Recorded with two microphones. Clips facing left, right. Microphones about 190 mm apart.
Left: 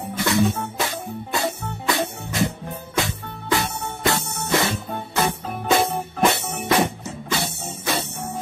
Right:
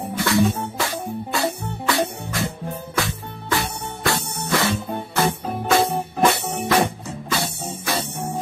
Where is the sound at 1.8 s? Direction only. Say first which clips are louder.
Right 2 dB; 20° left (ahead or behind).